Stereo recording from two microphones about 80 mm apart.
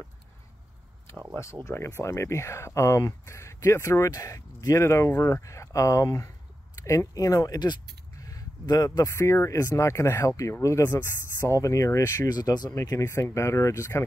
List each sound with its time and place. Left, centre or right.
1.4 s speech: left
10.9 s speech: left
12.3 s speech: left
13.0 s speech: left